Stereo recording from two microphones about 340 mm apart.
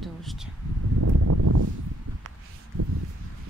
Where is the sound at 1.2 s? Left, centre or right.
Right.